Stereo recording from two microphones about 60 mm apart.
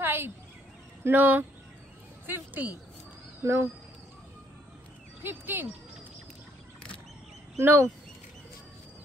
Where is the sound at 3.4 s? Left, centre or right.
Right.